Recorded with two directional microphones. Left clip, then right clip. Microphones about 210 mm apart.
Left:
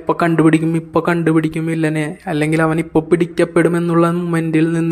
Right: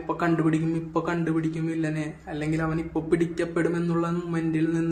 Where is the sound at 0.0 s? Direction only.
40° left (ahead or behind).